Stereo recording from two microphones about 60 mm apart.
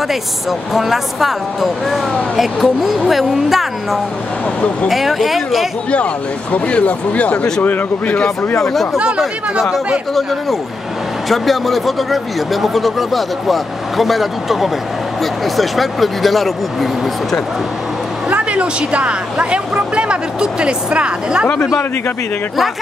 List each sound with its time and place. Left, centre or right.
0.1 s speech: centre
6.5 s speech: left
8.5 s speech: centre
8.9 s speech: centre
9.2 s speech: centre
11.2 s speech: centre
18.3 s speech: centre